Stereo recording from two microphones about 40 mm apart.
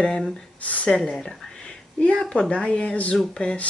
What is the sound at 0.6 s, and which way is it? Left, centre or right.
Speech, left.